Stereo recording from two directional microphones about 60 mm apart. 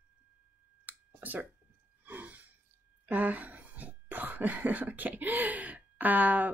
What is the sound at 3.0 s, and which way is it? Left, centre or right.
Speech, right.